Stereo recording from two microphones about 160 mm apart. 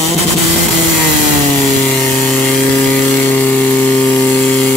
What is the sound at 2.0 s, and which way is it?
Sawing, centre (ahead or behind).